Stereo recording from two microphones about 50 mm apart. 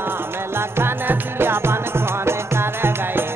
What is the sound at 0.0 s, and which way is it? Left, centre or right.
Music, right.